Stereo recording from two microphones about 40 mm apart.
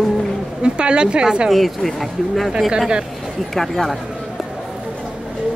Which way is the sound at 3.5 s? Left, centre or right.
Centre.